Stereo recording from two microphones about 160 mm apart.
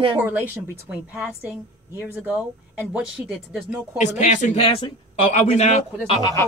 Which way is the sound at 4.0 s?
50° left (ahead or behind).